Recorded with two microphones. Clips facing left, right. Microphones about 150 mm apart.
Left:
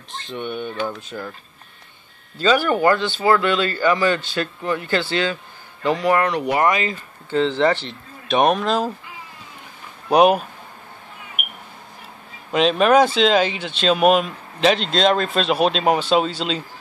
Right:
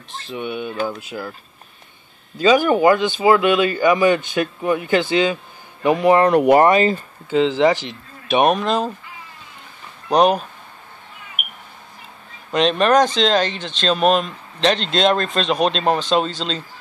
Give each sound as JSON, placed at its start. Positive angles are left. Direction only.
{"t": 0.1, "sound": "speech", "side_deg": -5}
{"t": 2.3, "sound": "speech", "side_deg": -15}
{"t": 6.3, "sound": "speech", "side_deg": -55}
{"t": 6.6, "sound": "speech", "side_deg": -35}
{"t": 7.2, "sound": "speech", "side_deg": -10}
{"t": 10.0, "sound": "speech", "side_deg": 10}
{"t": 12.5, "sound": "speech", "side_deg": 5}